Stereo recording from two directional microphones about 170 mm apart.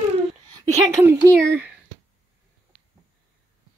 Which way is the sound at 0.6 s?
20° right (ahead or behind).